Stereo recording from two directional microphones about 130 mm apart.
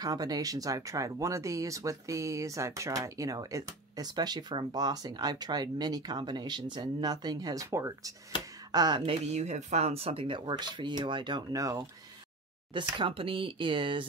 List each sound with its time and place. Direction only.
0.0 s speech: 30° right (ahead or behind)
9.0 s speech: 55° right (ahead or behind); by 11.8 s 25° right (ahead or behind)
12.7 s speech: 40° right (ahead or behind)